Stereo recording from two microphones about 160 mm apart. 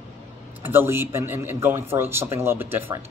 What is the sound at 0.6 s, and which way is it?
Speech, 15° right (ahead or behind).